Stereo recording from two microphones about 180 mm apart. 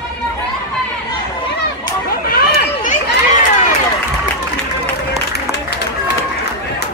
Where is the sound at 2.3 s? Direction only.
60° left (ahead or behind).